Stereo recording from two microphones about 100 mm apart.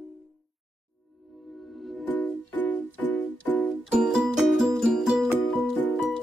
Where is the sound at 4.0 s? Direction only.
5° right (ahead or behind).